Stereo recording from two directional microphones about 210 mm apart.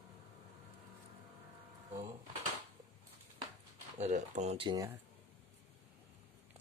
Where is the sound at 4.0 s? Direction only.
35° right (ahead or behind).